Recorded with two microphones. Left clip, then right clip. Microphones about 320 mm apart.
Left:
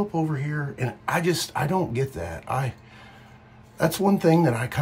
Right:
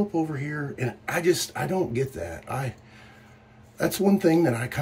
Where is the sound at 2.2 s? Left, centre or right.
Centre.